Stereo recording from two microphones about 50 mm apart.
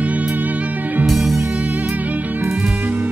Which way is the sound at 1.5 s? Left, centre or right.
Right.